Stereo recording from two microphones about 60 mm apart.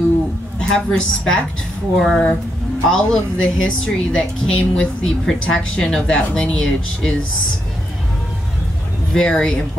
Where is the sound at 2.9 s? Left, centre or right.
Centre.